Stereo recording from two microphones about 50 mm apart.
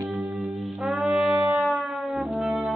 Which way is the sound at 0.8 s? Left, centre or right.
Centre.